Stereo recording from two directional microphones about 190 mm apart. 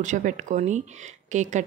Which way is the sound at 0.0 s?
40° right (ahead or behind).